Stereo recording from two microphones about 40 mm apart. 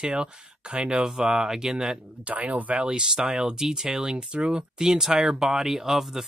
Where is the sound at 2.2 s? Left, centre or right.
Right.